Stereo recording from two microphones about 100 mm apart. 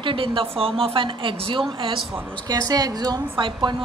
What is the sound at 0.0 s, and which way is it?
A woman's voice, 60° right (ahead or behind).